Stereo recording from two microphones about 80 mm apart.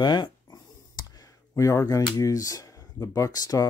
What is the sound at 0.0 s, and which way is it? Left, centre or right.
Speech, left.